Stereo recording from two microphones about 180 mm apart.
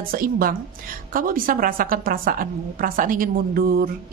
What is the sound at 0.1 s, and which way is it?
A woman's voice, 55° right (ahead or behind).